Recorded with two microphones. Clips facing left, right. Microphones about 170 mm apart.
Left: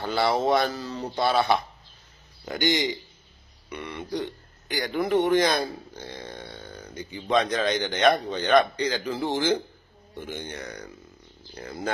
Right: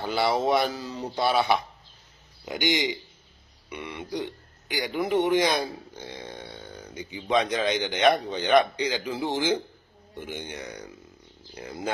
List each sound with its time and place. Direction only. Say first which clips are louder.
0.0 s speech: left 1 dB; 10° right (ahead or behind)